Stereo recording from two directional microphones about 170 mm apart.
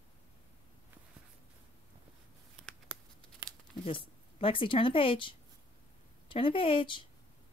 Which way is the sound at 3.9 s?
30° left (ahead or behind).